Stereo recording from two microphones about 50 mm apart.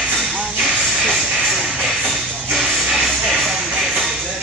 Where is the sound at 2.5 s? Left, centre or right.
Centre.